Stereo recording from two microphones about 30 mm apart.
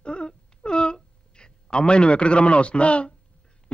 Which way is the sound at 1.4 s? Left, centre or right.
Left.